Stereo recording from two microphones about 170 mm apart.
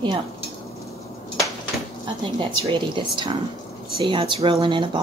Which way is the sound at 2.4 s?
25° right (ahead or behind).